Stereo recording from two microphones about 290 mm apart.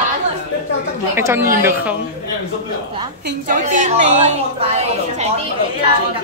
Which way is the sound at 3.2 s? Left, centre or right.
Right.